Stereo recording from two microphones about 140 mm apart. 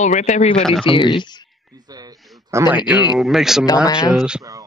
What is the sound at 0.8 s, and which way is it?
Speech, 35° left (ahead or behind).